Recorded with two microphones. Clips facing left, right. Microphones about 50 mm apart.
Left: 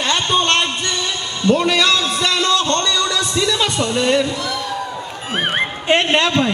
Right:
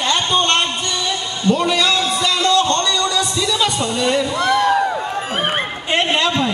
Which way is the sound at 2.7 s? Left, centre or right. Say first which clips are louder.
Even; left.